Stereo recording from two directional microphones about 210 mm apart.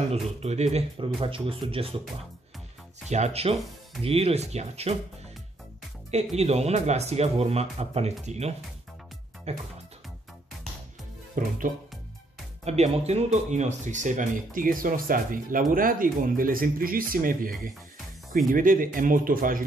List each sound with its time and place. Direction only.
0.1 s speech: 30° right (ahead or behind)
3.1 s speech: 30° right (ahead or behind)
6.1 s speech: 30° right (ahead or behind)
11.4 s speech: 40° right (ahead or behind)
12.6 s speech: 30° right (ahead or behind)